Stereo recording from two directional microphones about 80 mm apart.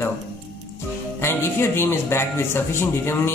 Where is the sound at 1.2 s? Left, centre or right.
Left.